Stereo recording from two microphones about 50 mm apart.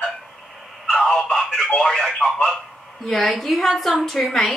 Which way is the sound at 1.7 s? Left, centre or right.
Centre.